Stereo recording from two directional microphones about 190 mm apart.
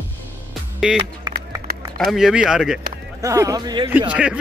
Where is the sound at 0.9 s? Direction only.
5° right (ahead or behind).